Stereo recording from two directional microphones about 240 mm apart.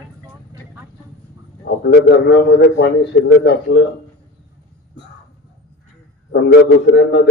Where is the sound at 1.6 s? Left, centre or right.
Left.